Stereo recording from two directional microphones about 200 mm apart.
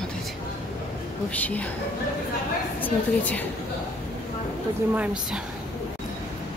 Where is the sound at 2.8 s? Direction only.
10° left (ahead or behind).